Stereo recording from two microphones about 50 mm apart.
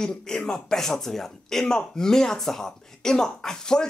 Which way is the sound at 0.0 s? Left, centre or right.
Centre.